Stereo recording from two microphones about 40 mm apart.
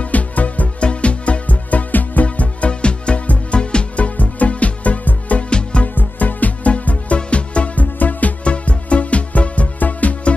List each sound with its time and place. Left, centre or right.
0.0 s music: left
3.9 s music: left
5.5 s music: left
5.9 s music: left
7.8 s music: left
8.5 s music: left